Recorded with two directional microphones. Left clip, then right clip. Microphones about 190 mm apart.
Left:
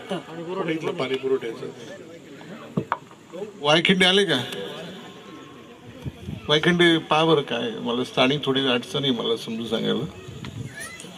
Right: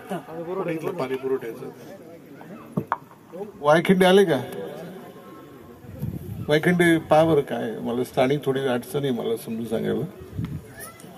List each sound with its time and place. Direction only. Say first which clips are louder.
0.1 s a man's voice: even; 10° right (ahead or behind)
2.8 s a sound: left 1 dB; 15° right (ahead or behind)
3.6 s a man's voice: right 1 dB; 30° right (ahead or behind); by 4.7 s 55° right (ahead or behind)
6.4 s a man's voice: left 1 dB; 70° right (ahead or behind)